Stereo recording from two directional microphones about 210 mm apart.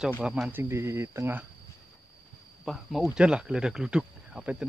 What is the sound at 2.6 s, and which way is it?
Speech, centre (ahead or behind).